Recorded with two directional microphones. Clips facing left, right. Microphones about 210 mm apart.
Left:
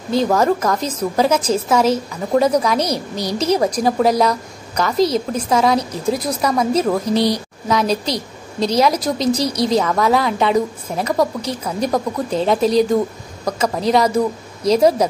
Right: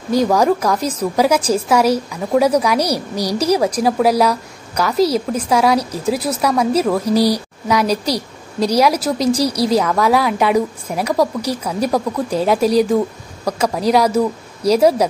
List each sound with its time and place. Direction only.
0.1 s a woman's voice: 10° right (ahead or behind)
9.4 s a woman's voice: 35° right (ahead or behind)
9.9 s a woman's voice: 5° right (ahead or behind)